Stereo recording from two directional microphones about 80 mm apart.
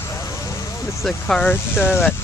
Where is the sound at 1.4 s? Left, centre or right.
Left.